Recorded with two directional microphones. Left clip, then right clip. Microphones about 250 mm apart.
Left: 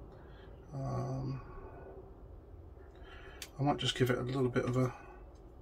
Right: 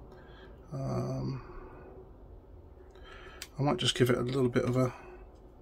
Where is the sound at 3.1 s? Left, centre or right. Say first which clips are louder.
Right 3 dB; right.